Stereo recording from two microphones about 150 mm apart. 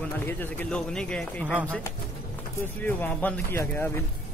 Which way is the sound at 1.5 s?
10° right (ahead or behind).